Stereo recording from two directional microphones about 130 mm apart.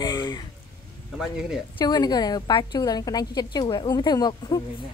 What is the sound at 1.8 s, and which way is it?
Speech, 30° left (ahead or behind).